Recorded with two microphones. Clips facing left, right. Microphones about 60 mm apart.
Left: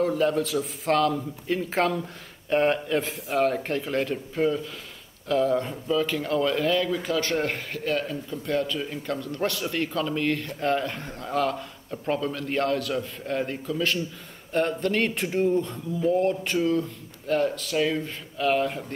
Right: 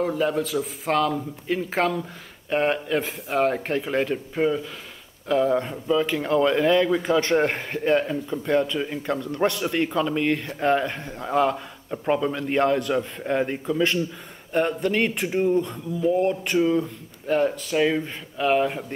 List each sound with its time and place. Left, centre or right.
0.0 s a man's voice: centre
3.4 s a man's voice: centre
16.0 s a man's voice: centre